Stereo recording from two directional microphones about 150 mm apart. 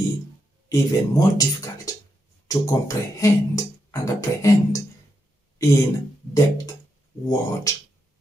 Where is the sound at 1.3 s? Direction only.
25° left (ahead or behind).